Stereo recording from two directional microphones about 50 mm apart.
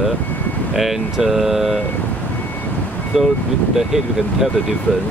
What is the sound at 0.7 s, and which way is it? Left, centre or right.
Speech, centre.